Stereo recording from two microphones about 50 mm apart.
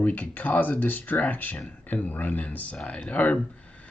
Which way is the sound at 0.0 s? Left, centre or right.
Left.